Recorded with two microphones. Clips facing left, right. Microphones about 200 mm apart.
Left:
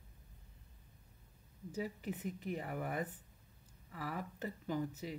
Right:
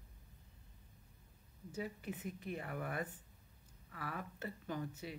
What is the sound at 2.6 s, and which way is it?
Speech, 10° left (ahead or behind).